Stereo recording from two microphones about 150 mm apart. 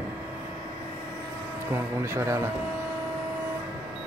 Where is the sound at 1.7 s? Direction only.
15° right (ahead or behind).